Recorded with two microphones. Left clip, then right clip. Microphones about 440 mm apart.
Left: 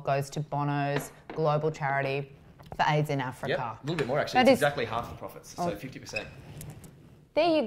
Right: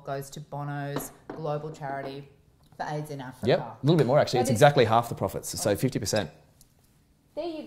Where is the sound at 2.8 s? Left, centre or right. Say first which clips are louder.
Left 7 dB; left.